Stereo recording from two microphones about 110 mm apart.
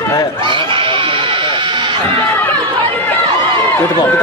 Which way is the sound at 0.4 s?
50° right (ahead or behind).